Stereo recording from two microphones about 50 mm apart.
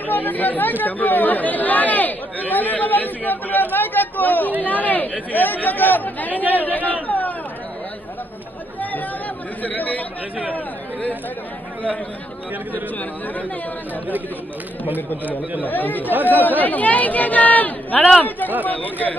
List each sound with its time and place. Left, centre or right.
0.0 s speech: left
9.6 s speech: left
15.6 s speech: left
16.0 s speech: right
16.6 s speech: left